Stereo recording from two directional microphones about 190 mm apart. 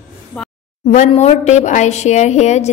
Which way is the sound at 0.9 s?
35° left (ahead or behind).